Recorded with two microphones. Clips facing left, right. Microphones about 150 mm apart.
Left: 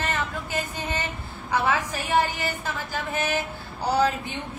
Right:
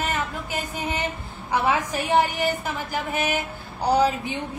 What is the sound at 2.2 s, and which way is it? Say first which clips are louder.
Speech: right 4 dB; 15° right (ahead or behind).